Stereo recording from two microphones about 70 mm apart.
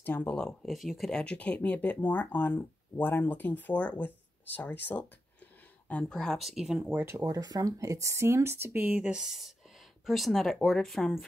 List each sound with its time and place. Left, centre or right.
0.0 s speech: left
0.4 s speech: centre
1.1 s speech: centre
6.1 s speech: centre
6.9 s speech: right
7.2 s speech: right
8.9 s speech: centre